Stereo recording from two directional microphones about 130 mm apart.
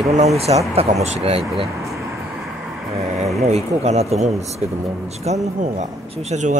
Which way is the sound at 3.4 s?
60° right (ahead or behind).